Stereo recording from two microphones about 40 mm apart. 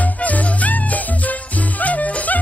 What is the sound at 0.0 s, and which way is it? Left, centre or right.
Music, left.